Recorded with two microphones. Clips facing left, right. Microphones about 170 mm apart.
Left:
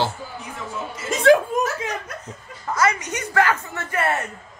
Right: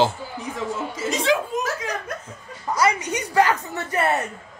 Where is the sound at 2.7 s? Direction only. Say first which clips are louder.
Right 1 dB; 15° right (ahead or behind).